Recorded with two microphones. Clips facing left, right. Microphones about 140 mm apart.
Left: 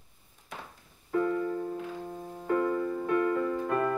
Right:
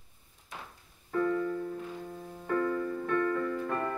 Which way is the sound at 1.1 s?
25° left (ahead or behind).